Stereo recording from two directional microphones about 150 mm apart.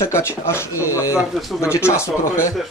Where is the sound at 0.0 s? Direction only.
15° left (ahead or behind).